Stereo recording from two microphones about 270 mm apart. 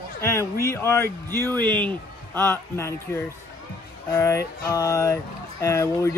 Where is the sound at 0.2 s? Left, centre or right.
Centre.